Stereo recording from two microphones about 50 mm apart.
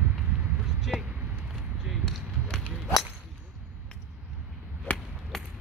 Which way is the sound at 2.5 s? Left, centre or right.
Centre.